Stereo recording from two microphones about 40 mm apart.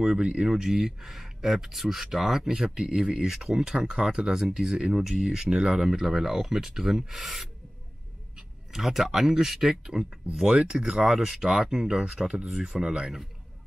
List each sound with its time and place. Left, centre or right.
0.0 s speech: right
0.5 s speech: centre
2.4 s speech: centre
5.0 s speech: centre